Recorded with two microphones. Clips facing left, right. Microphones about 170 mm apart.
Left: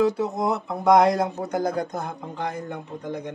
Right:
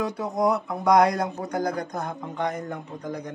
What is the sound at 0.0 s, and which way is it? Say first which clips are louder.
Speech: left 2 dB; 25° left (ahead or behind).